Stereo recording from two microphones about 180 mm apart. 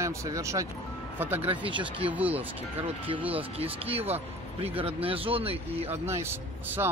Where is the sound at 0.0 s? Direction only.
15° right (ahead or behind).